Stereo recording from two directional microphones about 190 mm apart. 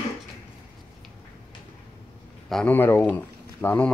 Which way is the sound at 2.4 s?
5° left (ahead or behind).